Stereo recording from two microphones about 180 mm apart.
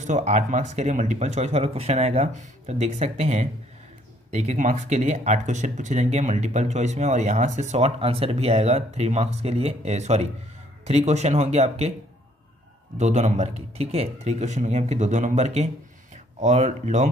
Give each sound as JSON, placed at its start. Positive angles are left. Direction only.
{"t": 0.0, "sound": "speech", "side_deg": -40}
{"t": 12.9, "sound": "speech", "side_deg": -40}